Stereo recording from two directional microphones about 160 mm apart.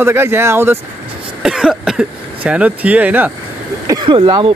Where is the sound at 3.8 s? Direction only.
25° right (ahead or behind).